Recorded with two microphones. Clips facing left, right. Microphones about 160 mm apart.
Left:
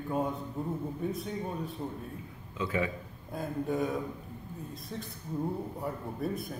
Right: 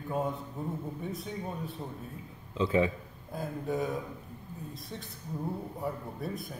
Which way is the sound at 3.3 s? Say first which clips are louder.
Left 1 dB; centre (ahead or behind).